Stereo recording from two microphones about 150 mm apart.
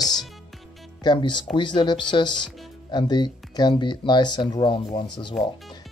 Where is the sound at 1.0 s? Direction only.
30° left (ahead or behind).